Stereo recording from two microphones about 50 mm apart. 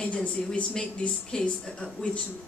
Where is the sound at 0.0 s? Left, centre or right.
Left.